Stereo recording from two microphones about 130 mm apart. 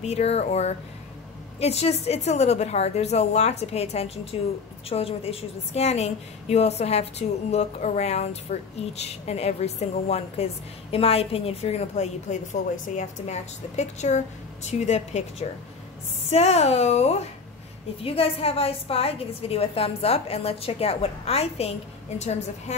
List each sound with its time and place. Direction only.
0.0 s a woman's voice: 55° left (ahead or behind)